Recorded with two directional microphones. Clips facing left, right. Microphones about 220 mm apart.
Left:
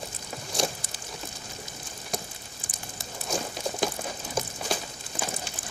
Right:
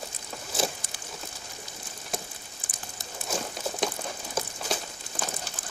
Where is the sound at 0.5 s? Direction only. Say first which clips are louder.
Left 1 dB; 5° right (ahead or behind).